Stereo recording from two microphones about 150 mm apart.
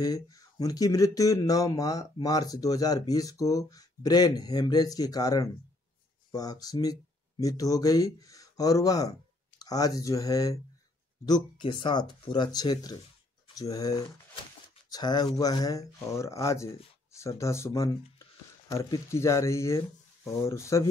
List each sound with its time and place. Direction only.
0.0 s speech: 25° left (ahead or behind)